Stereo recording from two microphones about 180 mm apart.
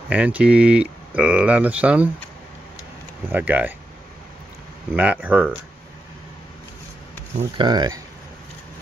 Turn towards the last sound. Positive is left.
turn(degrees=-25)  # may be behind; listen again after turning